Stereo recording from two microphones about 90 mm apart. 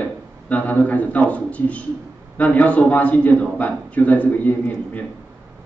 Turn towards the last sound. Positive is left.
turn(degrees=15)  # may be behind; listen again after turning